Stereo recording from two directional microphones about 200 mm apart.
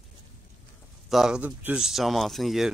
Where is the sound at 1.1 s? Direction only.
5° right (ahead or behind).